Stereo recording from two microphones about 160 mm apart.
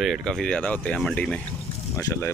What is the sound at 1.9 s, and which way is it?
Speech, 15° left (ahead or behind).